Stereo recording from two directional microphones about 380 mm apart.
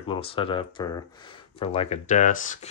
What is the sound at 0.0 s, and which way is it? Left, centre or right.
Speech, centre.